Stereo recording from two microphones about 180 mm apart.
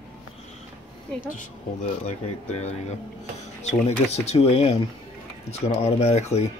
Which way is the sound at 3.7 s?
35° left (ahead or behind).